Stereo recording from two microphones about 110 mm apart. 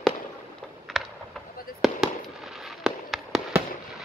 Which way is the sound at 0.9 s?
Centre (ahead or behind).